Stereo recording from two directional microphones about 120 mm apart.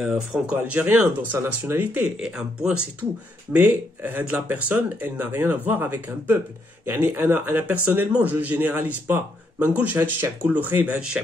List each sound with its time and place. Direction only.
0.0 s a man's voice: 5° right (ahead or behind)
2.1 s a man's voice: 5° right (ahead or behind)